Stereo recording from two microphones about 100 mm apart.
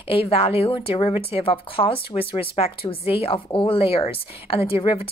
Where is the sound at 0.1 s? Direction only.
75° left (ahead or behind).